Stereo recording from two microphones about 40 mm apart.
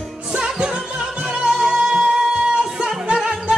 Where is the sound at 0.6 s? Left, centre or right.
Centre.